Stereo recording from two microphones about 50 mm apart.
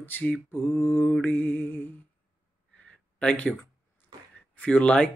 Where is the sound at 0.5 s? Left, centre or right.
Left.